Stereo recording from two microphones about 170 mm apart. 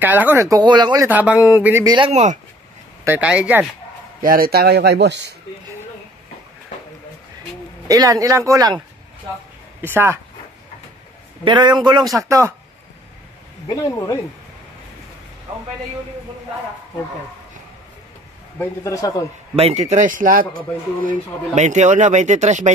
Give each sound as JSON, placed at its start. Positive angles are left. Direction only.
{"t": 0.0, "sound": "speech", "side_deg": -10}
{"t": 1.0, "sound": "speech", "side_deg": -10}
{"t": 2.0, "sound": "speech", "side_deg": -35}
{"t": 3.1, "sound": "speech", "side_deg": -5}
{"t": 4.2, "sound": "speech", "side_deg": -60}
{"t": 7.9, "sound": "speech", "side_deg": -20}
{"t": 11.4, "sound": "speech", "side_deg": -25}
{"t": 13.7, "sound": "a man's voice", "side_deg": 20}
{"t": 18.6, "sound": "a man's voice", "side_deg": 20}
{"t": 19.5, "sound": "speech", "side_deg": -40}